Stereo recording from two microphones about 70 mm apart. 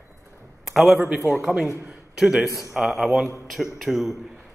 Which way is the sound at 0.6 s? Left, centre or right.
Centre.